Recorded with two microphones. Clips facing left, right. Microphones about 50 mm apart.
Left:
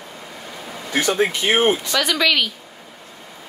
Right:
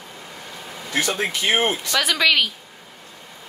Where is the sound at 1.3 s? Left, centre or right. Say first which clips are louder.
Left 3 dB; left.